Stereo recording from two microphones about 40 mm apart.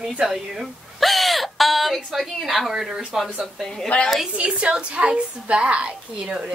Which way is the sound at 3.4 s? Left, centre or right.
Centre.